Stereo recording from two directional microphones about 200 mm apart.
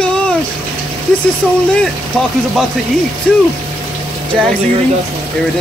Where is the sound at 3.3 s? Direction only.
5° left (ahead or behind).